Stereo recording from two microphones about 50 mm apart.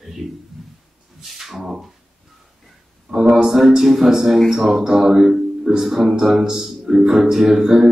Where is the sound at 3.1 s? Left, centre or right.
Centre.